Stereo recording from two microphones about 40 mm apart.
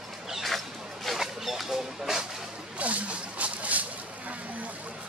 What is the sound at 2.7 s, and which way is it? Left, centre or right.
Vehicle, right.